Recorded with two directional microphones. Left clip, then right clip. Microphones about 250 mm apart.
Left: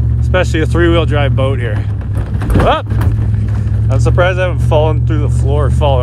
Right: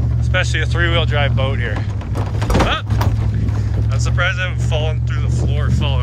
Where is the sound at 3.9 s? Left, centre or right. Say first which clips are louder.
Left 7 dB; centre.